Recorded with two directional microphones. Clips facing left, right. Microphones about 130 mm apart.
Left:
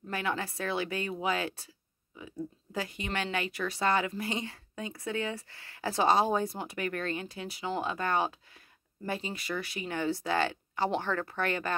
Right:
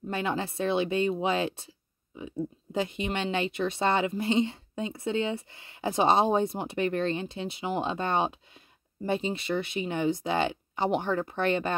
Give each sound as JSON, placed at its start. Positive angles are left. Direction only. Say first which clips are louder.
{"t": 0.1, "sound": "speech", "louder": "right 3 dB", "side_deg": -25}